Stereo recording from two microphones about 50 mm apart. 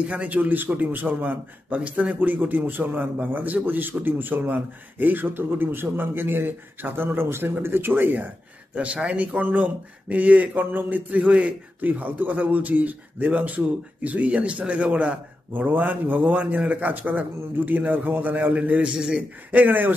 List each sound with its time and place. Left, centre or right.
0.0 s a man's voice: right
8.7 s a man's voice: right
18.9 s a man's voice: centre
19.5 s a man's voice: right